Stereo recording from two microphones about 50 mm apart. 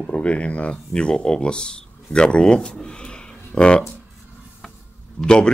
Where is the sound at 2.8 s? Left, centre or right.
Centre.